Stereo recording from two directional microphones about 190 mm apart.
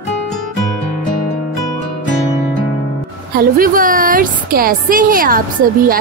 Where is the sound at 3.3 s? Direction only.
50° right (ahead or behind).